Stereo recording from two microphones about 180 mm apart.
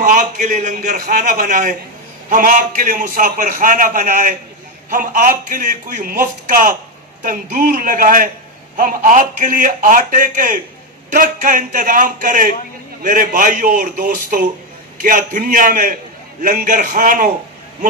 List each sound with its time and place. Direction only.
0.1 s a man's voice: 40° right (ahead or behind)